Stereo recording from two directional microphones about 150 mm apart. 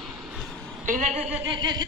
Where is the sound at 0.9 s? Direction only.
55° right (ahead or behind).